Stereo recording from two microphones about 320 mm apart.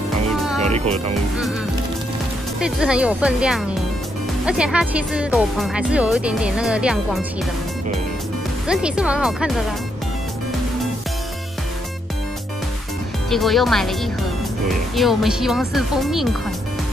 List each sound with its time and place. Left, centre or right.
0.6 s music: centre
2.6 s speech: centre
8.6 s speech: centre
13.3 s speech: centre
15.0 s speech: centre